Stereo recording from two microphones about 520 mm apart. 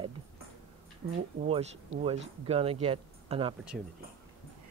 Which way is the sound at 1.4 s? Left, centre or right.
Centre.